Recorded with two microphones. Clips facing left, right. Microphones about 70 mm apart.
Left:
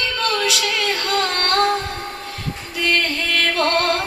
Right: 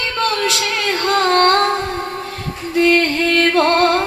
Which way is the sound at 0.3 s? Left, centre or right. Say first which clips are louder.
Right 2 dB; right.